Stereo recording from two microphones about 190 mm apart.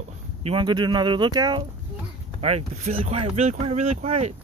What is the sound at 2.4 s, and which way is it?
Speech, 35° right (ahead or behind).